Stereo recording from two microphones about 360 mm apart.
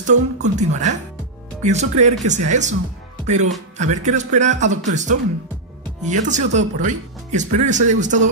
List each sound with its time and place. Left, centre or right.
0.0 s speech: centre